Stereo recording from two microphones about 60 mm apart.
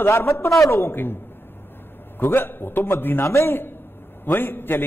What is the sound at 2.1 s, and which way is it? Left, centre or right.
A man's voice, left.